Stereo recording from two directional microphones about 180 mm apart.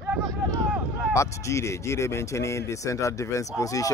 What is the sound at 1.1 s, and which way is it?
Speech, 15° left (ahead or behind).